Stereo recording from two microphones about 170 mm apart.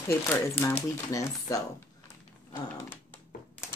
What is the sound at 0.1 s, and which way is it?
Speech, 15° left (ahead or behind).